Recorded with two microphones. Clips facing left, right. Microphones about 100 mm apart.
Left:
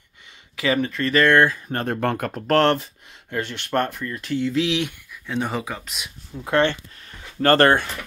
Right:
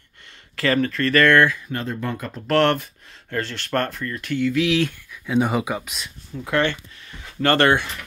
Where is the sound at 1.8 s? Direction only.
65° left (ahead or behind).